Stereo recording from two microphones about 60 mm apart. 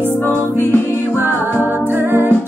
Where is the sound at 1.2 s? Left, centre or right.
Right.